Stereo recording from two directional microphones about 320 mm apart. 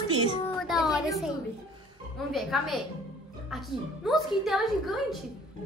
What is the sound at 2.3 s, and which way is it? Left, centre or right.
A woman's voice, centre.